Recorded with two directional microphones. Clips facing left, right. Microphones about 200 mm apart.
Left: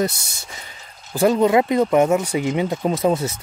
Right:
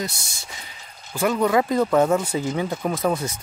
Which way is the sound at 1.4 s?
20° left (ahead or behind).